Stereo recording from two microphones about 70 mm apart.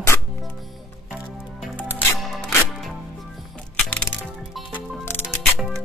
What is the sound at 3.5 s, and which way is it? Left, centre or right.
Music, centre.